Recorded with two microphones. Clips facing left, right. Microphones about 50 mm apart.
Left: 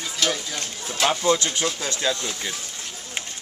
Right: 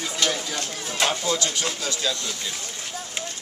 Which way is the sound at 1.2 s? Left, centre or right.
Left.